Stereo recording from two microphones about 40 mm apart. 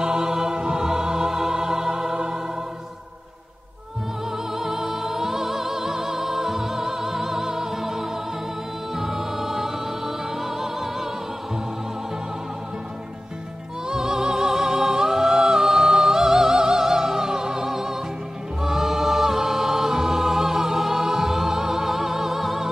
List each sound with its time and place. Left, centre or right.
0.0 s music: centre
4.5 s music: centre
13.8 s music: centre
18.6 s choir: centre